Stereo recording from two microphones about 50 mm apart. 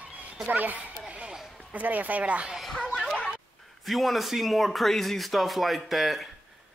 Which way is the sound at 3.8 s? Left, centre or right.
Centre.